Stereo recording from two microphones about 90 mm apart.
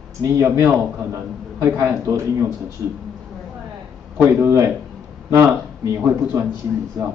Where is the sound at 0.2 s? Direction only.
40° right (ahead or behind).